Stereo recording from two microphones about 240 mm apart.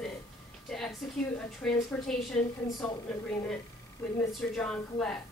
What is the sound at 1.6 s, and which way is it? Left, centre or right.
Speech, centre.